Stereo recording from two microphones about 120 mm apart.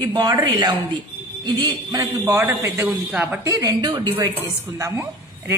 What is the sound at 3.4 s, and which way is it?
Speech, 25° right (ahead or behind).